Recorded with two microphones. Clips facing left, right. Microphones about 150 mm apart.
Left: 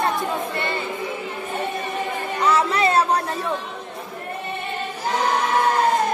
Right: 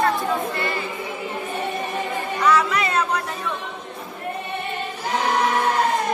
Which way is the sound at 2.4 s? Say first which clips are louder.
Left 1 dB; 25° left (ahead or behind).